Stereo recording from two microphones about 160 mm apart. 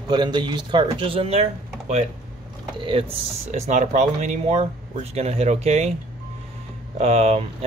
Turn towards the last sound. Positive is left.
turn(degrees=-40)  # may be behind; listen again after turning